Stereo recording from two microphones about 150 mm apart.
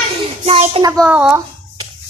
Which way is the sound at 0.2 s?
40° right (ahead or behind).